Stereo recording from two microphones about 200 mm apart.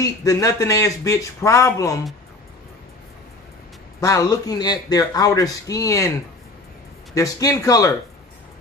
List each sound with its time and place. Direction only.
0.0 s speech: 15° left (ahead or behind)
4.0 s speech: 15° left (ahead or behind)
7.2 s speech: 15° left (ahead or behind)